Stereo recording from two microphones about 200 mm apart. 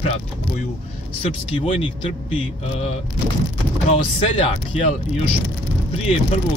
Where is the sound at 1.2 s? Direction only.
25° left (ahead or behind).